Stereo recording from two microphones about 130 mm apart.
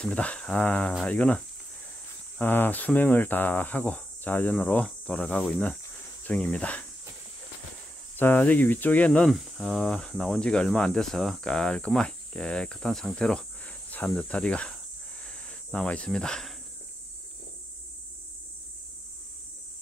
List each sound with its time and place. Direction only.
0.0 s speech: 10° left (ahead or behind)
8.2 s speech: 15° left (ahead or behind)
9.3 s speech: centre (ahead or behind)
15.2 s cricket: 10° left (ahead or behind)